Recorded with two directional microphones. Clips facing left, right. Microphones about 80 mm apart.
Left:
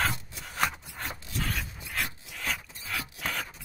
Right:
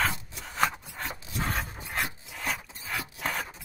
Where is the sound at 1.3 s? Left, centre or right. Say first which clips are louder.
Right 3 dB; right.